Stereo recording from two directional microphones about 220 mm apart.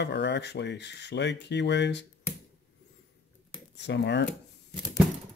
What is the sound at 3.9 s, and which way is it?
Speech, 50° left (ahead or behind).